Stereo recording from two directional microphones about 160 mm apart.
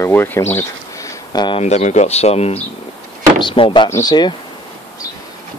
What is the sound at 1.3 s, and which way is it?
Speech, 30° left (ahead or behind).